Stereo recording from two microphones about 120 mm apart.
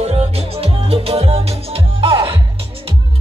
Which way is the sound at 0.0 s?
55° right (ahead or behind).